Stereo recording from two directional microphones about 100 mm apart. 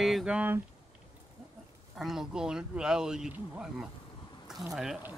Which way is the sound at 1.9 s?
5° right (ahead or behind).